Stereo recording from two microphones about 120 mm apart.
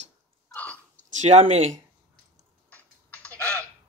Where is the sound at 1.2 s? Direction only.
75° right (ahead or behind).